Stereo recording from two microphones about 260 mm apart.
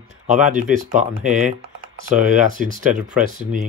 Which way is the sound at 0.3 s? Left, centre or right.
Right.